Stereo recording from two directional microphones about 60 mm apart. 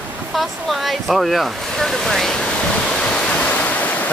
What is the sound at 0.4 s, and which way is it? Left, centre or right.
Speech, centre.